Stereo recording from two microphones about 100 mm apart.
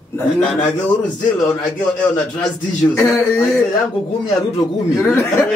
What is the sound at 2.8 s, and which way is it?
Speech, 30° left (ahead or behind).